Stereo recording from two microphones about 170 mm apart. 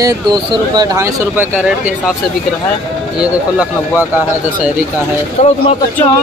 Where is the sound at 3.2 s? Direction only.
5° right (ahead or behind).